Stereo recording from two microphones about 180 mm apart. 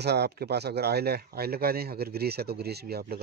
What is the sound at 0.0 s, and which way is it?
Speech, 65° right (ahead or behind).